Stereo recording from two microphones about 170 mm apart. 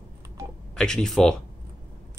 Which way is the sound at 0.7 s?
5° left (ahead or behind).